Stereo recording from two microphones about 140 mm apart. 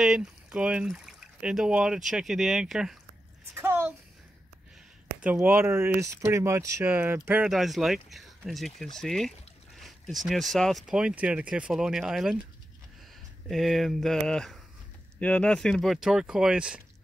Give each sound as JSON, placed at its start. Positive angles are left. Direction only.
{"t": 0.0, "sound": "speech", "side_deg": -5}
{"t": 3.5, "sound": "a child's voice", "side_deg": -15}
{"t": 5.2, "sound": "speech", "side_deg": -10}
{"t": 7.5, "sound": "speech", "side_deg": 0}
{"t": 13.5, "sound": "speech", "side_deg": 0}